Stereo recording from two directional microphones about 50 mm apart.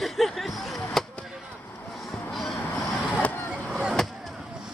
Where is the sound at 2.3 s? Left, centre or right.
Centre.